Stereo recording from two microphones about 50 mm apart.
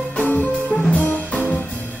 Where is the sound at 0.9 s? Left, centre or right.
Left.